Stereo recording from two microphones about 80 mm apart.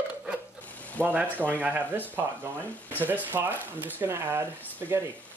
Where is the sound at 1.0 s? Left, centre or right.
Centre.